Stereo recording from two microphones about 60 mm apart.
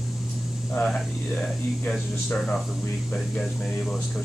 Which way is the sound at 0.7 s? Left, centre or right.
Centre.